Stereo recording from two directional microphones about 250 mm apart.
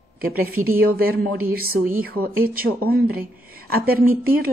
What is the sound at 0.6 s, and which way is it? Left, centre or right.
A woman's voice, right.